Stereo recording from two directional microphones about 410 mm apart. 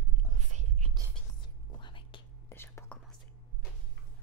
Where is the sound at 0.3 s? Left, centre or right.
Centre.